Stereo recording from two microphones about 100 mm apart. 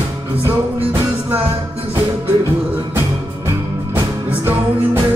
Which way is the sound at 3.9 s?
20° right (ahead or behind).